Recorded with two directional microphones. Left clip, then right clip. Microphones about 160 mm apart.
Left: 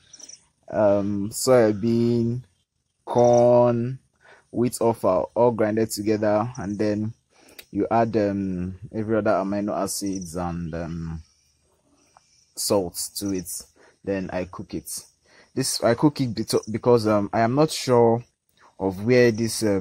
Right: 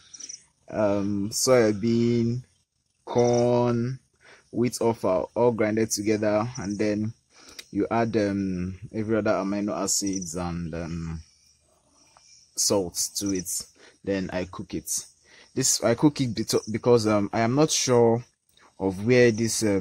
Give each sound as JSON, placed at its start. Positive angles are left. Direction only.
{"t": 0.7, "sound": "speech", "side_deg": 5}